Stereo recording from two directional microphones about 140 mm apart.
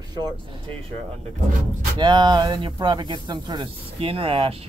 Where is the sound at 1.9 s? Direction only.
30° right (ahead or behind).